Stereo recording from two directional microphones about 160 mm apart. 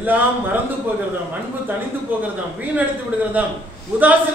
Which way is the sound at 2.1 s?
10° right (ahead or behind).